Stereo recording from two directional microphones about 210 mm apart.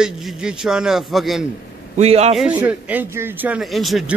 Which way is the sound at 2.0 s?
30° right (ahead or behind).